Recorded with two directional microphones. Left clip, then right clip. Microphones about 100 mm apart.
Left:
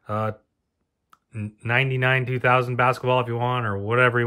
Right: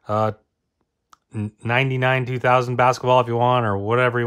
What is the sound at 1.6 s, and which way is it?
Speech, 20° right (ahead or behind).